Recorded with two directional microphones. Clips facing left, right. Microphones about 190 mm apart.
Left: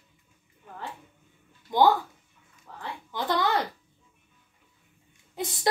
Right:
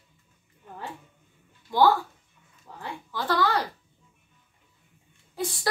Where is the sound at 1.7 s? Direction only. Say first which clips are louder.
Even; 20° left (ahead or behind).